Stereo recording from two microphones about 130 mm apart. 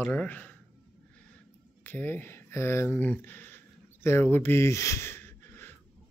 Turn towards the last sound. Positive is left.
turn(degrees=15)  # may be behind; listen again after turning